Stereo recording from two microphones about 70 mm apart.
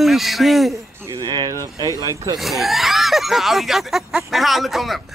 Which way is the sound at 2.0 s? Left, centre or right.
Right.